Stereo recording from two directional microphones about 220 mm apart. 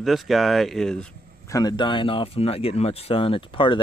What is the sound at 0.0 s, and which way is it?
Speech, centre (ahead or behind).